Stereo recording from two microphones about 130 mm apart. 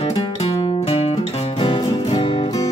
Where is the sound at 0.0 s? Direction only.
55° left (ahead or behind).